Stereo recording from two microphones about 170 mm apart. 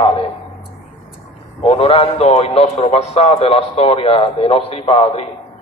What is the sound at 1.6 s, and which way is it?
A man's voice, 35° left (ahead or behind).